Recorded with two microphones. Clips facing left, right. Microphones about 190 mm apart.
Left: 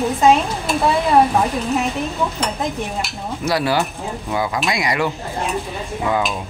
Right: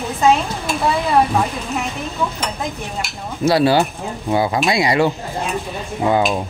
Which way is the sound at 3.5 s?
25° right (ahead or behind).